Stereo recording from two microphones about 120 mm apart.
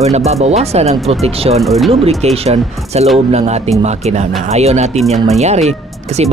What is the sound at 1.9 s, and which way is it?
Speech, 60° right (ahead or behind).